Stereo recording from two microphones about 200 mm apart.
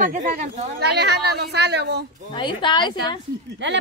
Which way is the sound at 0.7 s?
55° right (ahead or behind).